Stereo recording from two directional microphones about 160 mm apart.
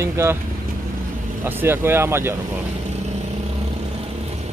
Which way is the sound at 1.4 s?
10° right (ahead or behind).